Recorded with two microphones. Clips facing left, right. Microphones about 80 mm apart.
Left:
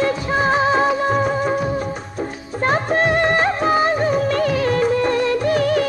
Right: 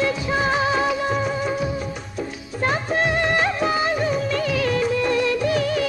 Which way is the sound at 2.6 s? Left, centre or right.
Left.